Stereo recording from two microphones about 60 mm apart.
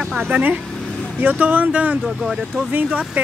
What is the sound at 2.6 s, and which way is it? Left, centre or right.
Speech, right.